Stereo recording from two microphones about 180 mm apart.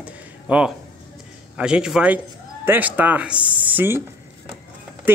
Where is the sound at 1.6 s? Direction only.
5° right (ahead or behind).